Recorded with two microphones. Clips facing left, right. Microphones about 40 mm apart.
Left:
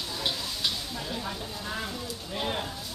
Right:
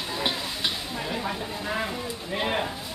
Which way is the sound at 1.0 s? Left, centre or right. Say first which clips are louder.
Right 5 dB; right.